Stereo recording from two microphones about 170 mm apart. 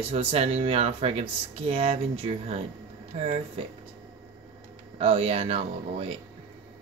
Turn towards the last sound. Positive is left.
turn(degrees=-35)  # may be behind; listen again after turning